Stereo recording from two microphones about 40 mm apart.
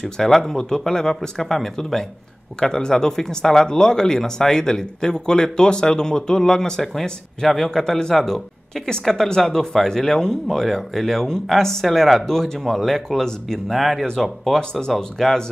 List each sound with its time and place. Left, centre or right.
0.0 s speech: centre
13.7 s speech: centre
14.6 s speech: centre